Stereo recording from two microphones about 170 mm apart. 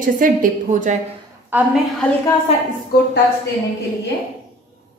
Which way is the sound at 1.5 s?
10° right (ahead or behind).